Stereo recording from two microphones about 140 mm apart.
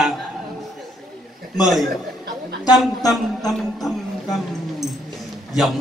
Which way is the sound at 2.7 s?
25° left (ahead or behind).